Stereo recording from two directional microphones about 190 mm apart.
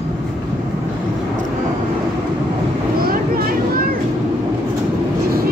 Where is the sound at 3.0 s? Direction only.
50° right (ahead or behind).